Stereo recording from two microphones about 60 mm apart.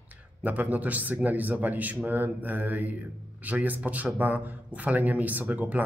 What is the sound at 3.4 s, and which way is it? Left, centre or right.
A man's voice, right.